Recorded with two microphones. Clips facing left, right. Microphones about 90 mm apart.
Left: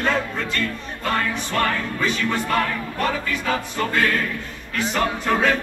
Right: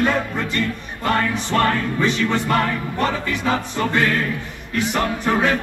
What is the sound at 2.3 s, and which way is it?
Music, 25° right (ahead or behind).